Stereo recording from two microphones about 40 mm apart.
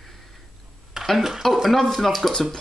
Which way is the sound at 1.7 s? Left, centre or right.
Centre.